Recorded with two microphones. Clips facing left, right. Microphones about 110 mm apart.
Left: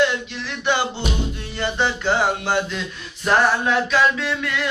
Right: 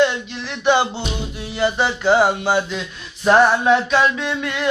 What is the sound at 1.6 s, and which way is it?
Music, 15° right (ahead or behind).